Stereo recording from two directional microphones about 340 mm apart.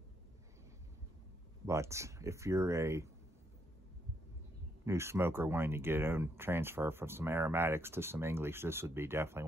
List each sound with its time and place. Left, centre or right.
1.7 s speech: centre
4.8 s speech: centre